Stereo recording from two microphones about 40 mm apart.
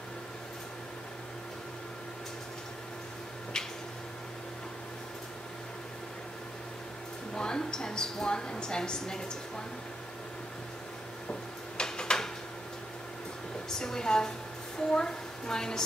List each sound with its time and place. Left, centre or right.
7.3 s a woman's voice: left
11.2 s a sound: left
13.7 s a woman's voice: centre